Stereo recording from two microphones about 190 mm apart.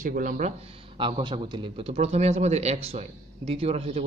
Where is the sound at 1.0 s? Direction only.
25° right (ahead or behind).